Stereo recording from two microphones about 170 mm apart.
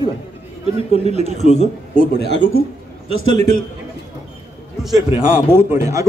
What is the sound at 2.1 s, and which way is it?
Speech, 85° left.